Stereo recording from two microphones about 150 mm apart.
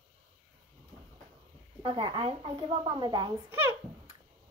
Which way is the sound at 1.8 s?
35° right (ahead or behind).